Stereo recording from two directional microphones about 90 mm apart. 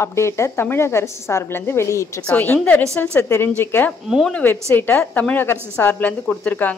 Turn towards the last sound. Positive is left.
turn(degrees=15)  # may be behind; listen again after turning